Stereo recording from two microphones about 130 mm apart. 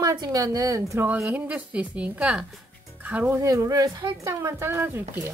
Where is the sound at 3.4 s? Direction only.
25° right (ahead or behind).